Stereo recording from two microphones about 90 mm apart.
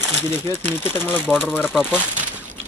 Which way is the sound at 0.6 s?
25° left (ahead or behind).